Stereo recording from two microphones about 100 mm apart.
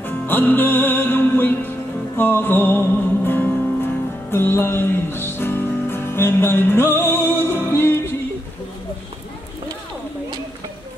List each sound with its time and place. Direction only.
0.0 s music: 20° left (ahead or behind)